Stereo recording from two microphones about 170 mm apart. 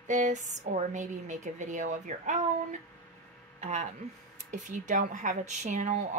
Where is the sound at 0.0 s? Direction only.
45° right (ahead or behind).